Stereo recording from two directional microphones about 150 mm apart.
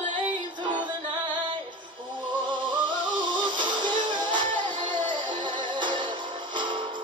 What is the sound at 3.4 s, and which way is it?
Music, 30° right (ahead or behind).